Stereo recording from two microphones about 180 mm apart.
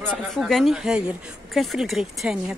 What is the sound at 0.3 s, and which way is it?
Speech, centre (ahead or behind).